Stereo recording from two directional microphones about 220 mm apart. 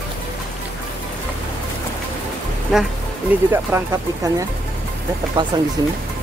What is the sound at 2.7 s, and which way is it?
Speech, 5° right (ahead or behind).